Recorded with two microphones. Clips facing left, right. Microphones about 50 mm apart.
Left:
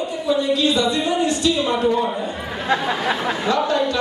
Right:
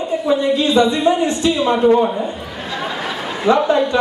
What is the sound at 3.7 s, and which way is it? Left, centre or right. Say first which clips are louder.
Speech: right 4 dB; right.